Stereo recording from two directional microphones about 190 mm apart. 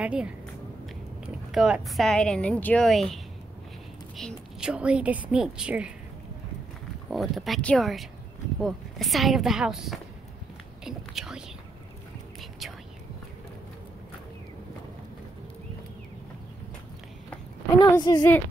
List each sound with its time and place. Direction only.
0.0 s speech: 5° right (ahead or behind)
4.2 s speech: centre (ahead or behind)
7.1 s speech: centre (ahead or behind)
10.8 s whispering: centre (ahead or behind)
17.7 s speech: 20° left (ahead or behind)